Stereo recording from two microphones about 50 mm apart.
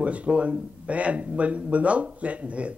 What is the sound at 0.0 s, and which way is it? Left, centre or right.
Speech, right.